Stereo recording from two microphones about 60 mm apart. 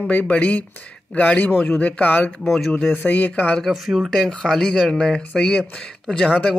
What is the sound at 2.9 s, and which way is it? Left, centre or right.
Speech, left.